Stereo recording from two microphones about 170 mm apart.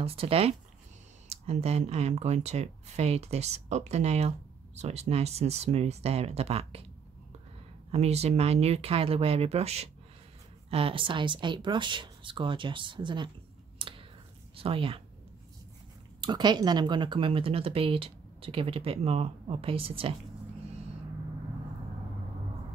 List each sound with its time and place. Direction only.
0.0 s speech: 35° right (ahead or behind)
7.9 s speech: 40° right (ahead or behind)
13.7 s a sound: 30° right (ahead or behind)
14.6 s speech: 35° right (ahead or behind)
16.2 s speech: 25° right (ahead or behind)